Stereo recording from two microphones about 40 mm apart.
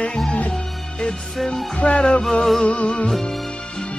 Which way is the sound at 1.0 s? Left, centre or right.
Centre.